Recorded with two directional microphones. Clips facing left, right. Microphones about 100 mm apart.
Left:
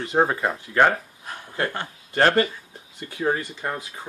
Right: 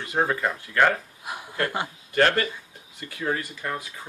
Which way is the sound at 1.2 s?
10° right (ahead or behind).